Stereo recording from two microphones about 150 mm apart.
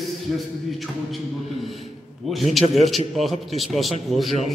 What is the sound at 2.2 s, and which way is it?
A man's voice, centre (ahead or behind).